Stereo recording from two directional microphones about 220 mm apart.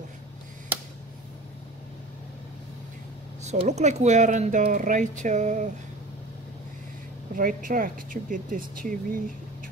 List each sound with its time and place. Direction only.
3.4 s speech: 30° right (ahead or behind)
7.3 s speech: 40° right (ahead or behind)